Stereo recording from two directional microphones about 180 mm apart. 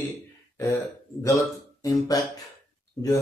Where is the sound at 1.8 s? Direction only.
20° left (ahead or behind).